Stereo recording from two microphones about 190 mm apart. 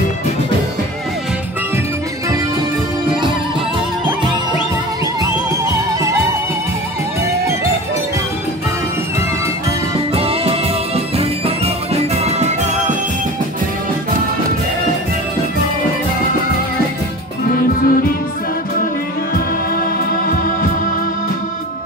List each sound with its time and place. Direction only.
5.7 s music: 15° right (ahead or behind)
10.1 s music: 30° right (ahead or behind)
17.5 s music: 50° left (ahead or behind)